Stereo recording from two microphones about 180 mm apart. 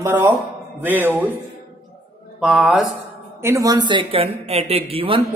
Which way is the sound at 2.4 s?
Centre (ahead or behind).